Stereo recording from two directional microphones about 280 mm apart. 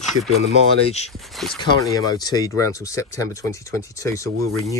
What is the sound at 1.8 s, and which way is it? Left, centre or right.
Speech, centre.